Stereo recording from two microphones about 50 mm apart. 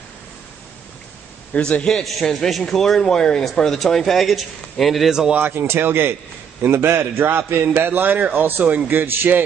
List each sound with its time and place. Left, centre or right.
1.5 s a man's voice: left
2.0 s a man's voice: centre
5.5 s a man's voice: right